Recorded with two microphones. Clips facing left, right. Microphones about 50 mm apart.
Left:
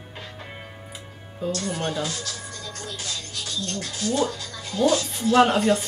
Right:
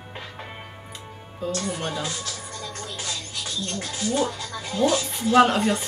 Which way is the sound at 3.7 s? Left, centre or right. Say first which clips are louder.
Even; right.